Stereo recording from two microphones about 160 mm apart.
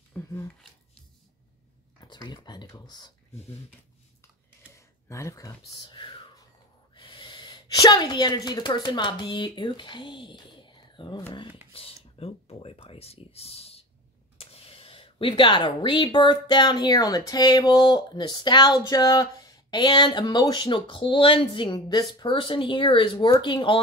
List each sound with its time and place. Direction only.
0.1 s a sound: 15° left (ahead or behind)
2.0 s speech: 25° left (ahead or behind)
4.7 s a woman's voice: 20° left (ahead or behind)